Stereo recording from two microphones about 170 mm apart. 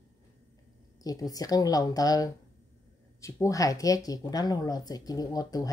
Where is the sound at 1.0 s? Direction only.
20° left (ahead or behind).